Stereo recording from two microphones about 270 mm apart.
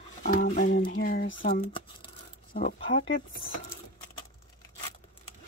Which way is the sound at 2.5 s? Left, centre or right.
Left.